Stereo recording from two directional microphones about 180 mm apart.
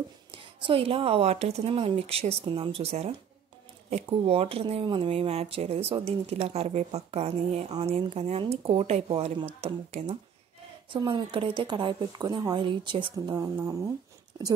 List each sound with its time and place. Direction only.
0.3 s a woman's voice: 30° right (ahead or behind)